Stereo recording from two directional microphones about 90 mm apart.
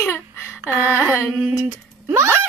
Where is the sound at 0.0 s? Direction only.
25° left (ahead or behind).